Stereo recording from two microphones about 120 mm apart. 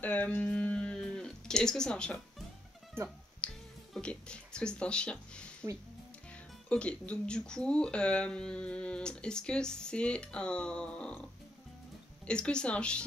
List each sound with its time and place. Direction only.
0.0 s a sound: 15° left (ahead or behind)
3.0 s speech: 20° right (ahead or behind)
3.4 s music: 10° left (ahead or behind)
3.9 s speech: 10° left (ahead or behind)
6.7 s speech: 10° left (ahead or behind)
12.3 s speech: 10° left (ahead or behind)